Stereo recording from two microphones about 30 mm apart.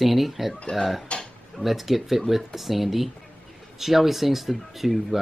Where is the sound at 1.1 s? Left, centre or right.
Left.